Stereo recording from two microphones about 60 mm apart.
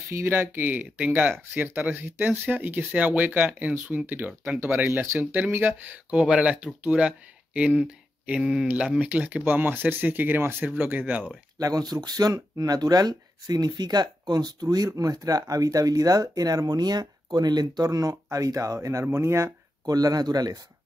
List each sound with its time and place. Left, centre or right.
0.1 s speech: right
1.3 s speech: right
6.1 s speech: centre
9.4 s speech: right
11.5 s speech: right
14.6 s speech: right
19.9 s speech: right